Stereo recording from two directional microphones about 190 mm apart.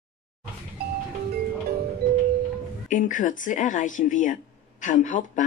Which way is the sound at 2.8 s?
45° left (ahead or behind).